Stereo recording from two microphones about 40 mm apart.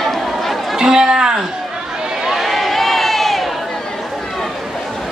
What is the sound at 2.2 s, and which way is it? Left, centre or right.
Crowd, centre.